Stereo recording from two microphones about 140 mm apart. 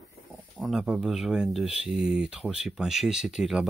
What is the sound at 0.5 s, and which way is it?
Speech, 5° right (ahead or behind).